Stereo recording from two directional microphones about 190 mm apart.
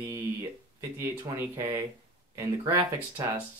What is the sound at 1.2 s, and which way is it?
Speech, 15° right (ahead or behind).